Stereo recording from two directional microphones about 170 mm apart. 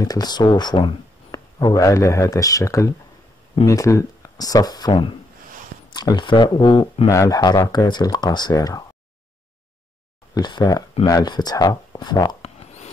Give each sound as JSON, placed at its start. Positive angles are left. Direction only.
{"t": 0.0, "sound": "speech", "side_deg": 25}
{"t": 10.3, "sound": "speech", "side_deg": 25}
{"t": 12.4, "sound": "a sound", "side_deg": 40}